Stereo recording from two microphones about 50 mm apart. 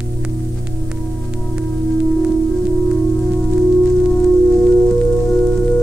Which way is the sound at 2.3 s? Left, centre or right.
Centre.